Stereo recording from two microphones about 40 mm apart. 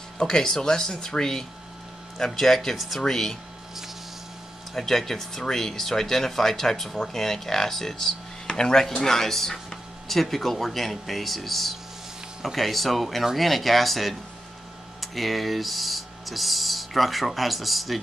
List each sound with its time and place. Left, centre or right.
0.2 s speech: centre
4.7 s speech: centre
8.5 s speech: centre
9.0 s speech: centre